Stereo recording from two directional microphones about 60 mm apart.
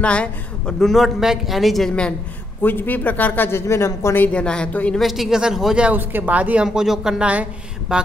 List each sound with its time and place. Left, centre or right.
0.0 s a woman's voice: centre
0.7 s a man's voice: centre
1.9 s a woman's voice: centre
2.6 s speech: left
4.2 s a woman's voice: centre
4.9 s a man's voice: centre
5.9 s a woman's voice: right
6.6 s speech: centre